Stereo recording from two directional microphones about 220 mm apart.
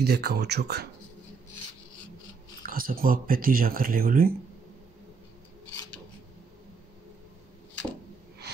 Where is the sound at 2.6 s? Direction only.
40° right (ahead or behind).